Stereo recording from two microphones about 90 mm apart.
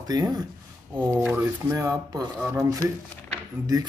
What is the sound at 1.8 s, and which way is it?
Speech, 35° right (ahead or behind).